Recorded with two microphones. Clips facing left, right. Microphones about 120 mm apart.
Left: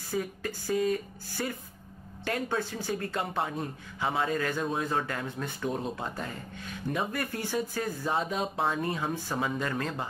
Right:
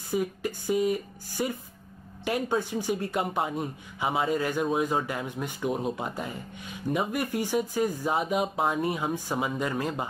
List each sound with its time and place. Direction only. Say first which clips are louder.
0.1 s speech: right 4 dB; 15° right (ahead or behind)